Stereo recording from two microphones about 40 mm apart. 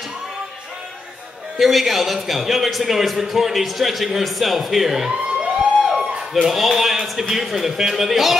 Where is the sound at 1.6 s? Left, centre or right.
Centre.